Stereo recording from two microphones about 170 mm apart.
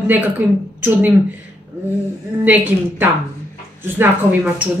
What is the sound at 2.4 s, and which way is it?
Speech, 10° right (ahead or behind).